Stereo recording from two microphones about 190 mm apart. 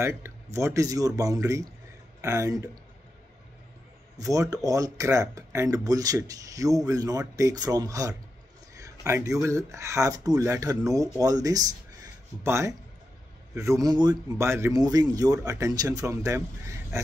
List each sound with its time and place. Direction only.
0.0 s speech: 15° right (ahead or behind)
4.2 s speech: 15° right (ahead or behind)
8.7 s a sound: 15° right (ahead or behind)
9.4 s speech: 15° right (ahead or behind)